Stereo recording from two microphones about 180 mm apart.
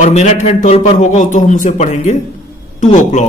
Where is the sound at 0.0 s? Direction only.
40° left (ahead or behind).